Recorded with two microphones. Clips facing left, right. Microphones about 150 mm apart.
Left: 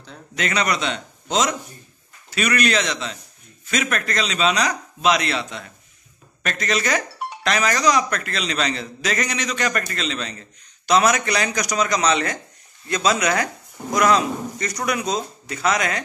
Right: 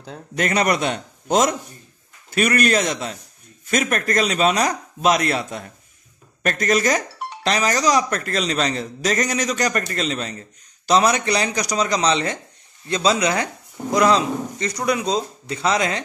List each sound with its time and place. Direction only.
0.0 s a man's voice: 45° right (ahead or behind); by 16.0 s 25° right (ahead or behind)